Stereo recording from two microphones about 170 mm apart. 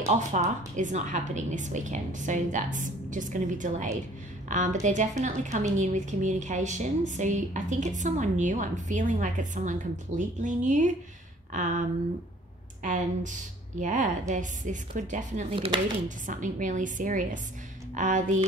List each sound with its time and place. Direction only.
0.0 s a woman's voice: 45° right (ahead or behind)
12.8 s a woman's voice: 50° right (ahead or behind)
15.5 s speech: 35° right (ahead or behind)
16.3 s a woman's voice: 50° right (ahead or behind)